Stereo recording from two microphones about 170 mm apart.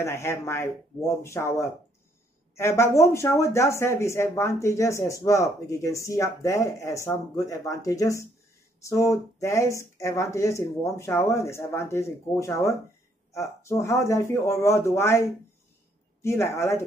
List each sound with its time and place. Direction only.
0.0 s speech: 15° left (ahead or behind)
2.5 s speech: 15° left (ahead or behind)